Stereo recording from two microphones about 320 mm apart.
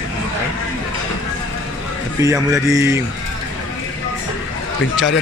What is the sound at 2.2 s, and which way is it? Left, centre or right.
Speech, centre.